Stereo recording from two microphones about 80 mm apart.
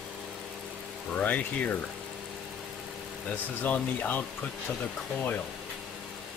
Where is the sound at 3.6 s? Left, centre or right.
Left.